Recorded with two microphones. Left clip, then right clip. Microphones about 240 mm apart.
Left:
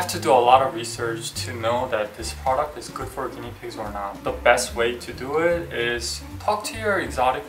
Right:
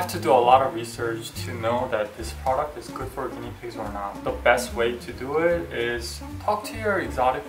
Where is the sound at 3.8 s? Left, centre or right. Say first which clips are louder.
Left 1 dB; centre.